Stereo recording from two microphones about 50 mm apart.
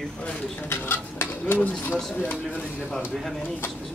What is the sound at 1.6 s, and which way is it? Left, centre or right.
Speech, left.